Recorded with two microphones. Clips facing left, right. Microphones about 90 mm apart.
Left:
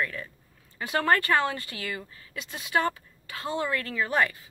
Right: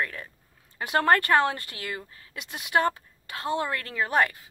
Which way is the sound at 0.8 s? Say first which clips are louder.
Right 2 dB; 55° right (ahead or behind).